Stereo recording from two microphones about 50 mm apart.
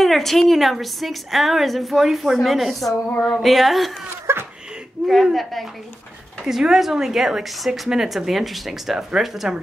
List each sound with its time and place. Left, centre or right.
0.0 s a woman's voice: centre
2.9 s a sound: centre
3.4 s a woman's voice: centre
4.3 s a sound: right
5.0 s a woman's voice: centre
6.4 s a woman's voice: centre